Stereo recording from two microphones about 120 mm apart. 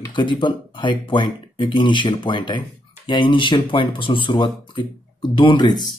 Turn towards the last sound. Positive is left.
turn(degrees=40)  # may be behind; listen again after turning